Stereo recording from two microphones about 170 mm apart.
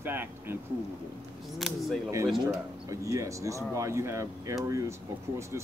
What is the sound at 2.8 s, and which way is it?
Speech, 20° right (ahead or behind).